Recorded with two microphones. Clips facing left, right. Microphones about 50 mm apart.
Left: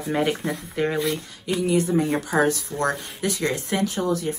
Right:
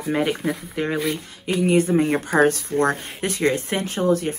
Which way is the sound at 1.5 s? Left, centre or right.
Right.